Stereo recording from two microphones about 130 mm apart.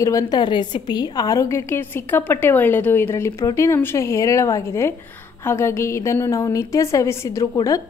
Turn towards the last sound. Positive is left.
turn(degrees=25)  # may be behind; listen again after turning